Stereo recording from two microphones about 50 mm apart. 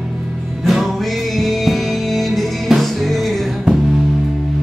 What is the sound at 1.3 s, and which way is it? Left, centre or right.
Music, centre.